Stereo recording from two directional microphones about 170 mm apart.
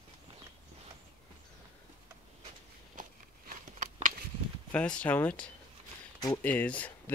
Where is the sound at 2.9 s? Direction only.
50° right (ahead or behind).